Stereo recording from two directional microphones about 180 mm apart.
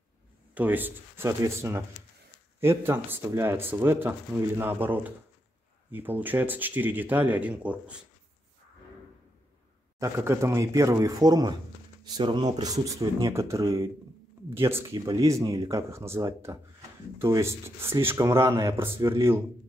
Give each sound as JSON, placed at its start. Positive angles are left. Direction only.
{"t": 0.6, "sound": "speech", "side_deg": -10}
{"t": 9.9, "sound": "speech", "side_deg": -15}